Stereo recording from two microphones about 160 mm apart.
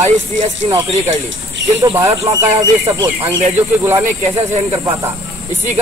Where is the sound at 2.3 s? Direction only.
40° right (ahead or behind).